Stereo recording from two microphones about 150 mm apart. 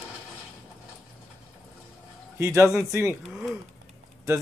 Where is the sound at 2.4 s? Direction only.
20° right (ahead or behind).